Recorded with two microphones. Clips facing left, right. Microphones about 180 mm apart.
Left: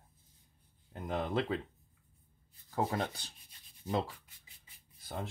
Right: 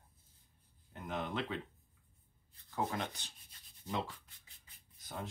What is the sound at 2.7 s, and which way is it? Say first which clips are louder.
Speech: left 4 dB; 35° left (ahead or behind).